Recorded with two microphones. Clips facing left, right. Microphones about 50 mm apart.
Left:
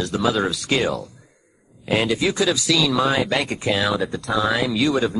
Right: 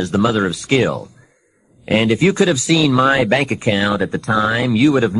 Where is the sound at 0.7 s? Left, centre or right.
Right.